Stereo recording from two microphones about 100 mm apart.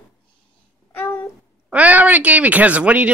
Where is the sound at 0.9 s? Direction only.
20° left (ahead or behind).